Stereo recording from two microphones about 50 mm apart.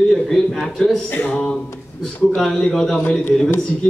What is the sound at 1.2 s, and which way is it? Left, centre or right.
A man's voice, centre.